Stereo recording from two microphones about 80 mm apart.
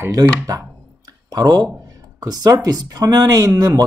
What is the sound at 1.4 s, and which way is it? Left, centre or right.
Speech, right.